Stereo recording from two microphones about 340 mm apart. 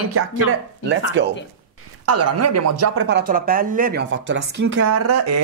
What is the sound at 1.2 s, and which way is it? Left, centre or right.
Speech, right.